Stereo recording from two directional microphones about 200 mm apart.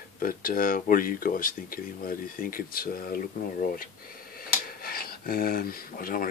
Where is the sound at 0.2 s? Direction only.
45° left (ahead or behind).